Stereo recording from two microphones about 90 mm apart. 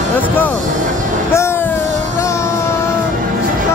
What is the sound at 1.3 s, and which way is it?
Music, 30° left (ahead or behind).